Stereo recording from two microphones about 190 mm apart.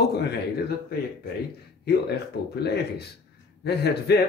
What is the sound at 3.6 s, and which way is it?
Speech, 60° left (ahead or behind).